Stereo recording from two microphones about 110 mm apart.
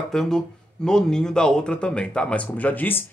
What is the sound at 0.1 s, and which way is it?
Speech, 5° left (ahead or behind).